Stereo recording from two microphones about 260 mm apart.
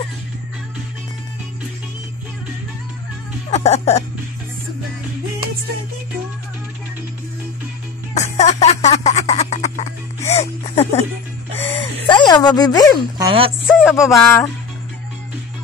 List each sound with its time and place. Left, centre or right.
3.4 s music: left
8.1 s music: left
10.3 s a sound: left
13.2 s speech: centre
13.7 s music: centre
13.9 s music: centre